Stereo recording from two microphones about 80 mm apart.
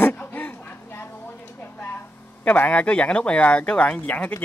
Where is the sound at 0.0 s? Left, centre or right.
Left.